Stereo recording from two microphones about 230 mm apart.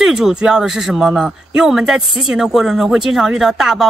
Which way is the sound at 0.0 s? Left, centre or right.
Centre.